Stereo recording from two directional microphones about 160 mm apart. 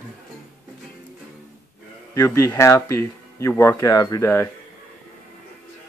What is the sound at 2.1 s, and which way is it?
Speech, 20° left (ahead or behind).